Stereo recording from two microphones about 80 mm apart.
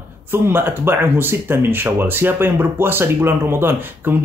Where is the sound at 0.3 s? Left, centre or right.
Right.